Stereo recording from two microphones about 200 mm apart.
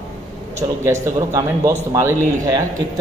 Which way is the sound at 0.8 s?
15° right (ahead or behind).